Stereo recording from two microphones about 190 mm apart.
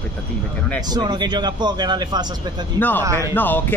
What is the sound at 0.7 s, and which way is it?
A man's voice, 20° right (ahead or behind).